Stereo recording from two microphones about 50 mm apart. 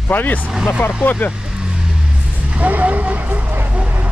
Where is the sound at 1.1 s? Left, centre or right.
Left.